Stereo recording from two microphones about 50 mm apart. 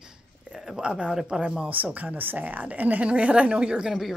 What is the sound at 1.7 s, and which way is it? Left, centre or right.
Speech, right.